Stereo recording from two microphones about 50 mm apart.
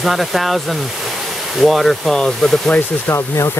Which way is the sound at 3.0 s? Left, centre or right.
Left.